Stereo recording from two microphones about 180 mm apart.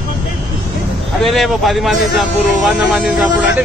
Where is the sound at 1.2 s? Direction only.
Centre (ahead or behind).